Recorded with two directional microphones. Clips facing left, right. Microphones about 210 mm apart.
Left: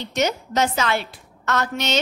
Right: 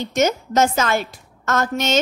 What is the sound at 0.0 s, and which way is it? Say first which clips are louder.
A woman's voice: right 4 dB; 45° right (ahead or behind).